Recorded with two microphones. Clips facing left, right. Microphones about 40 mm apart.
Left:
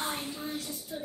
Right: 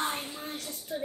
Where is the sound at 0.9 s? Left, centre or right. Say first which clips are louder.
Right 5 dB; right.